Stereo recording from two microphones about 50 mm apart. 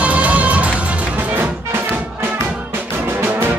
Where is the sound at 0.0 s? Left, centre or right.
Right.